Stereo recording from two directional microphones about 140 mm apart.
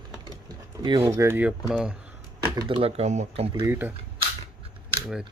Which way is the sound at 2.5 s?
30° right (ahead or behind).